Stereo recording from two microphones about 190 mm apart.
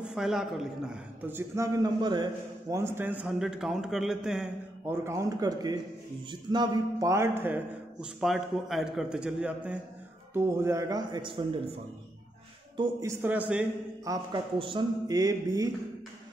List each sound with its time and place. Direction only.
0.0 s a man's voice: centre (ahead or behind); by 2.2 s 25° right (ahead or behind)
2.7 s a man's voice: 15° right (ahead or behind)
12.7 s a man's voice: 15° right (ahead or behind)
14.0 s speech: 20° right (ahead or behind)